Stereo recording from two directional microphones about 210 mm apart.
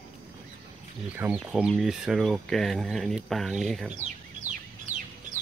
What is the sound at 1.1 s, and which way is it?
Speech, 5° right (ahead or behind).